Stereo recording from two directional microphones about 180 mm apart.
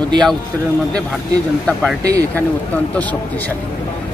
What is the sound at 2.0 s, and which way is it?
Speech, 20° right (ahead or behind).